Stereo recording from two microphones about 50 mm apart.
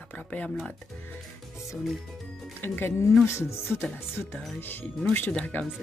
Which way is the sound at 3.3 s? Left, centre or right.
Left.